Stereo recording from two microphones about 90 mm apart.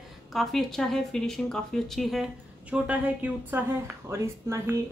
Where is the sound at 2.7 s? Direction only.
15° right (ahead or behind); by 4.7 s 30° right (ahead or behind).